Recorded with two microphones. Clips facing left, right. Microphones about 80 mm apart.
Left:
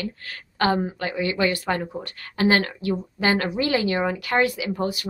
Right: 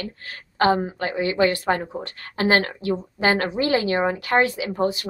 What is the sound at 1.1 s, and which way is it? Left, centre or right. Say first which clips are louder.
Speech: right 4 dB; right.